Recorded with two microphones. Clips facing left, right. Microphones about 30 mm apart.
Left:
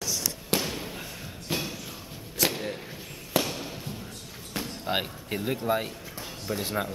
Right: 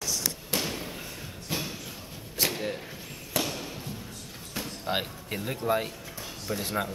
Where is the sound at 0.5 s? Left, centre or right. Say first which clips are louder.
Left 3 dB; left.